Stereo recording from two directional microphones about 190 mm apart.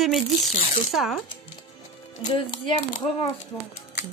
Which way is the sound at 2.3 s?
25° left (ahead or behind).